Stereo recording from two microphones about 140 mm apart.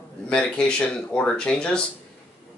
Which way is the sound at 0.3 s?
5° left (ahead or behind).